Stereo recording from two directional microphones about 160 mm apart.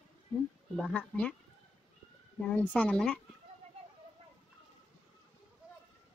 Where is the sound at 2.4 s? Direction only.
10° left (ahead or behind).